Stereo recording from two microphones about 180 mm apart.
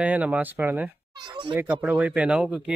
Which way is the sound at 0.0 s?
10° right (ahead or behind).